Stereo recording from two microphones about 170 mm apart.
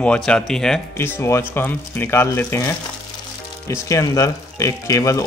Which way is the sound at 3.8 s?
20° left (ahead or behind).